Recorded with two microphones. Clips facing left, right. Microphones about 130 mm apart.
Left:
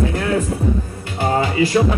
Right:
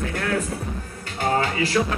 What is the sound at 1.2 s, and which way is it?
Music, 10° left (ahead or behind).